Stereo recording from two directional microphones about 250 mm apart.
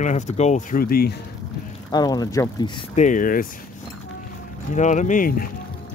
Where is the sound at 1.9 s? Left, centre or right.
Centre.